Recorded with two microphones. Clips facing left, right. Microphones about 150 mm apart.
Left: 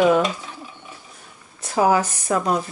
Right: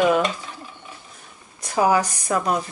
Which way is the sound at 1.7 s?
15° left (ahead or behind).